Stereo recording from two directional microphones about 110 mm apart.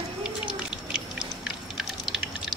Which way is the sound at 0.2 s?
10° right (ahead or behind).